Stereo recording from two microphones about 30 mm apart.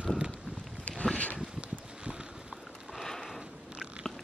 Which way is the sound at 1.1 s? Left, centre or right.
Left.